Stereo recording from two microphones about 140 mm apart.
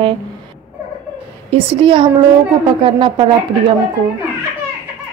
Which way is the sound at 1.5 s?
40° right (ahead or behind).